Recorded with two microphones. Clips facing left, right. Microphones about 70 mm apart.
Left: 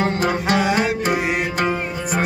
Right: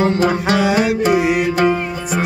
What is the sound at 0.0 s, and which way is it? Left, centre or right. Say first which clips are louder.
Music: right 4 dB; left.